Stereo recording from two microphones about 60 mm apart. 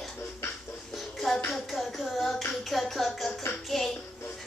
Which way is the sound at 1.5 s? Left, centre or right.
Centre.